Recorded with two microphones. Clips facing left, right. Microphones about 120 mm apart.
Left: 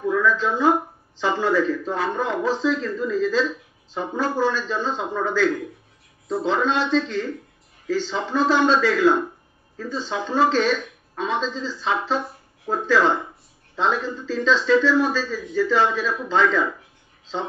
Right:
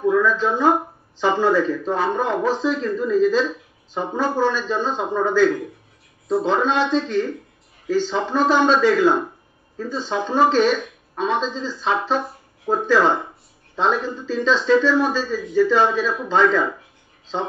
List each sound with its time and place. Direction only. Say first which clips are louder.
0.0 s speech: right 3 dB; 15° right (ahead or behind)